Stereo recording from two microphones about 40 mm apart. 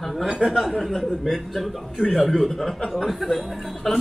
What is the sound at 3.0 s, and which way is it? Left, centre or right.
Speech, centre.